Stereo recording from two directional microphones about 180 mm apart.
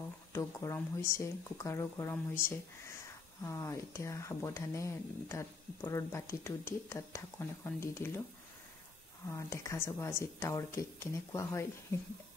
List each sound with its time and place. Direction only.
0.3 s speech: 15° left (ahead or behind)
3.4 s speech: 15° left (ahead or behind)
9.3 s speech: 15° left (ahead or behind)